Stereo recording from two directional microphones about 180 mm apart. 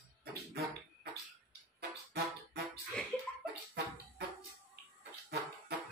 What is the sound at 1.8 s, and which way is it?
Music, 65° right (ahead or behind).